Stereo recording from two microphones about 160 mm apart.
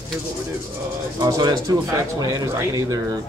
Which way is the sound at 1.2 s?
25° right (ahead or behind).